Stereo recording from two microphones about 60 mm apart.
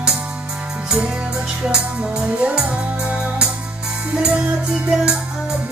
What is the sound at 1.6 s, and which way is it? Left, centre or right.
Music, centre.